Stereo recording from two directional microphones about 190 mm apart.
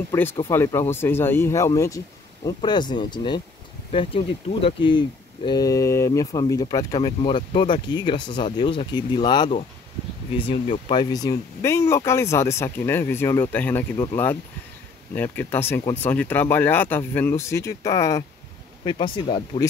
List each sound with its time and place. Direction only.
0.1 s speech: 10° left (ahead or behind); by 19.6 s 30° left (ahead or behind)